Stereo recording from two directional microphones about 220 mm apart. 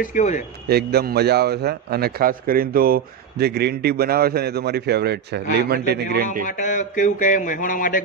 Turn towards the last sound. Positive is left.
turn(degrees=35)  # may be behind; listen again after turning